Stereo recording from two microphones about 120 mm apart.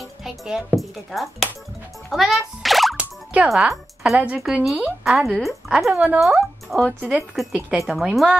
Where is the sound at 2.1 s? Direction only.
Centre (ahead or behind).